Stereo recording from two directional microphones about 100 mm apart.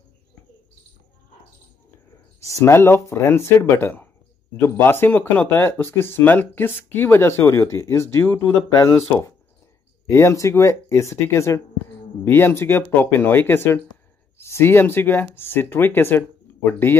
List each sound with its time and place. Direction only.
2.4 s speech: 30° left (ahead or behind)